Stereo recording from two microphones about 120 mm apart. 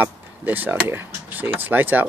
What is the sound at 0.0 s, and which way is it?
Speech, 15° right (ahead or behind).